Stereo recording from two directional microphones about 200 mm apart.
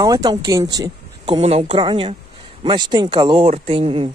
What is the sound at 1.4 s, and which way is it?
Speech, 30° right (ahead or behind).